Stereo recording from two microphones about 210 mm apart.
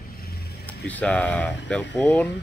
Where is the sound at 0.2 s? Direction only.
50° left (ahead or behind).